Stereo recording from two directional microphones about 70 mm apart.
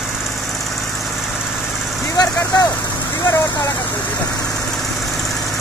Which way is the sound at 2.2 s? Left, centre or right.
Left.